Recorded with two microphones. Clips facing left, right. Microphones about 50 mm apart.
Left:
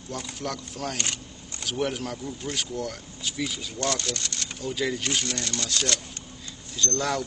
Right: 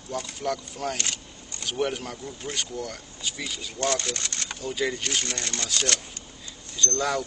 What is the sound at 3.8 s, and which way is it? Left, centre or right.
Speech, right.